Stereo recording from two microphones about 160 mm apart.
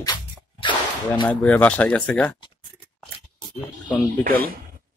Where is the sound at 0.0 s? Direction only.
30° left (ahead or behind).